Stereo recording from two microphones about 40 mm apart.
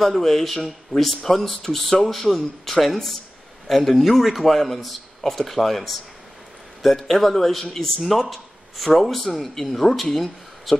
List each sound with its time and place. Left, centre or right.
0.0 s speech: centre